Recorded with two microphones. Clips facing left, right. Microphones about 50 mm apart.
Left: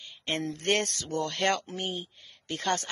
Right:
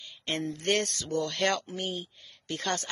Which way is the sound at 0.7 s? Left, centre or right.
Left.